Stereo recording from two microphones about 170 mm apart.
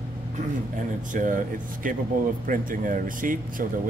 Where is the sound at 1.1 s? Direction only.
50° right (ahead or behind).